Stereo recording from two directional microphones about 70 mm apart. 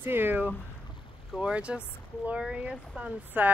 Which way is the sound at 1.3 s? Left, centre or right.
Centre.